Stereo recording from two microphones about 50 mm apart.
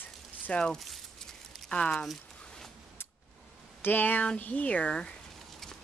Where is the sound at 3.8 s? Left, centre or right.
Left.